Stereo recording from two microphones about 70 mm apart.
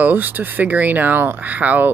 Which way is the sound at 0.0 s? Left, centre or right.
Right.